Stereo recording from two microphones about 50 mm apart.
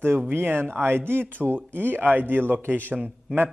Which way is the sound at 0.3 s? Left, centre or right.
Right.